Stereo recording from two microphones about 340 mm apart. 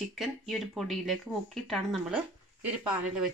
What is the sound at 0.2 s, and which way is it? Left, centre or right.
Speech, centre.